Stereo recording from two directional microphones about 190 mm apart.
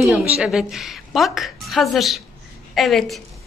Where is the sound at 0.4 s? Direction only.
5° right (ahead or behind).